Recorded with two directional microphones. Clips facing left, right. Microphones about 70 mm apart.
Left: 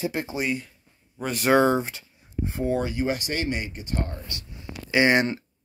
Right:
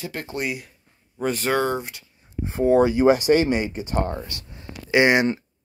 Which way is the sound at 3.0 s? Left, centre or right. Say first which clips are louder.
Right 11 dB; right.